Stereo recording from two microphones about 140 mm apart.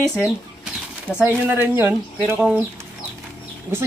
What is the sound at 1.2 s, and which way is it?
Speech, 15° right (ahead or behind).